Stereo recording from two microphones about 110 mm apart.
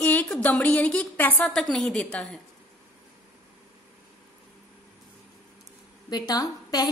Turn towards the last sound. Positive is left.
turn(degrees=35)  # may be behind; listen again after turning